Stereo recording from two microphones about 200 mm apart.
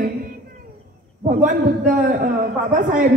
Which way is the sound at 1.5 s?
45° right (ahead or behind).